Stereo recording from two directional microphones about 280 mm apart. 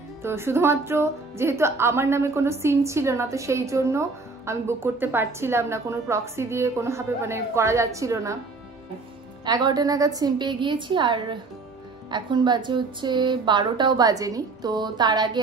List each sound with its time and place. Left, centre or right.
0.2 s speech: centre
9.4 s speech: centre